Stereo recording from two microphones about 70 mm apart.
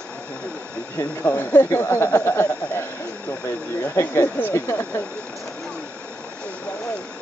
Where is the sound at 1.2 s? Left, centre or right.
Left.